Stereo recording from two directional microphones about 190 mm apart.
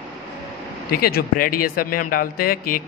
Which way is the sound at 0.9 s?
55° left (ahead or behind).